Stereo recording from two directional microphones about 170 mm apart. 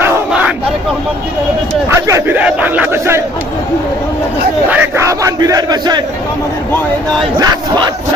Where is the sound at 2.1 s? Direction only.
10° right (ahead or behind).